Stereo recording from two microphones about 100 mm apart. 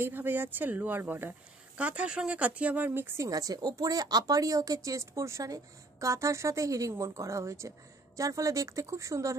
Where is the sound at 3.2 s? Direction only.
35° right (ahead or behind).